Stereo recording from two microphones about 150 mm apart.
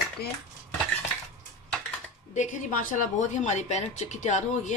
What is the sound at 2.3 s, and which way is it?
A woman's voice, 55° left (ahead or behind).